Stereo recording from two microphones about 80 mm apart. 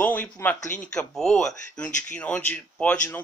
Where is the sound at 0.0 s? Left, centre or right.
Left.